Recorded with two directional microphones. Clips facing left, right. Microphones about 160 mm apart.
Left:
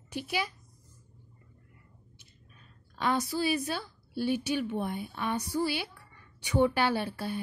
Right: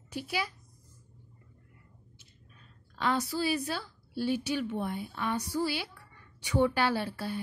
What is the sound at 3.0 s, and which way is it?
A woman's voice, 20° left (ahead or behind).